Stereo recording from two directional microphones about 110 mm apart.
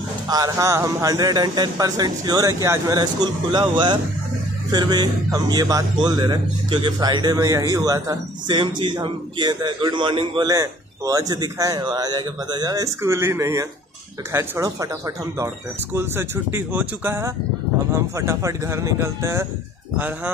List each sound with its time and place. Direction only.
0.3 s speech: 30° right (ahead or behind)
8.5 s a man's voice: 45° right (ahead or behind)
10.4 s speech: 30° right (ahead or behind)